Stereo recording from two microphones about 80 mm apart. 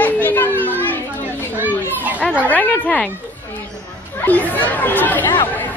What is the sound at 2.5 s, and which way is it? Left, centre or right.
Speech, centre.